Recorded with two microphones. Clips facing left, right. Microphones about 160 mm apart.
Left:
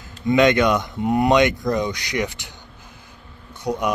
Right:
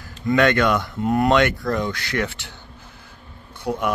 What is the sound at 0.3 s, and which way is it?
Speech, 15° left (ahead or behind).